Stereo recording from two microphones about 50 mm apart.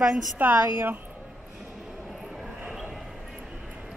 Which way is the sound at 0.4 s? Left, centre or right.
Right.